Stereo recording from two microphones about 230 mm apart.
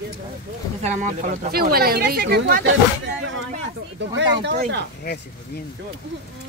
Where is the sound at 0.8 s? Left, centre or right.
Right.